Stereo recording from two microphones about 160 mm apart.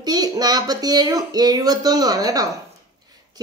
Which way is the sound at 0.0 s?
25° right (ahead or behind).